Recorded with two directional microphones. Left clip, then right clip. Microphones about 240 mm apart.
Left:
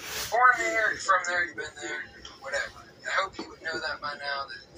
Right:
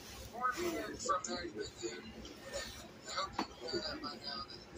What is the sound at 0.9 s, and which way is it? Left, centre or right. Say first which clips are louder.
A man's voice: left 13 dB; centre.